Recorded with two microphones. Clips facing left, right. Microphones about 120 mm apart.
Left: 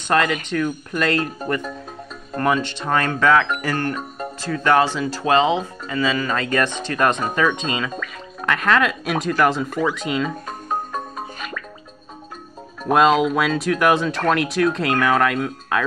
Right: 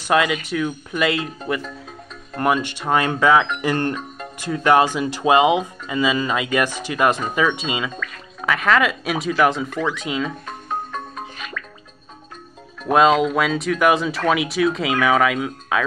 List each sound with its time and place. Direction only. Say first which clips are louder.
0.1 s speech: right 1 dB; 5° right (ahead or behind)
2.3 s speech: even; 5° right (ahead or behind)
12.8 s speech: even; centre (ahead or behind)